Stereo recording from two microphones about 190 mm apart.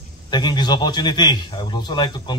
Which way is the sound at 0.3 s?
20° left (ahead or behind).